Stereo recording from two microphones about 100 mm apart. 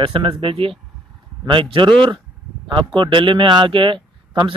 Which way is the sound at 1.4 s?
55° right (ahead or behind).